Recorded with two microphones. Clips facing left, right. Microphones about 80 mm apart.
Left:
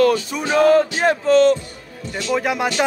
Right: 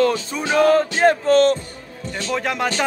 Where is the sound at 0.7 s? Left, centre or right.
Right.